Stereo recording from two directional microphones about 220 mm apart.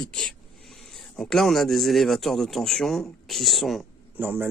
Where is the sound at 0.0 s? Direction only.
Centre (ahead or behind).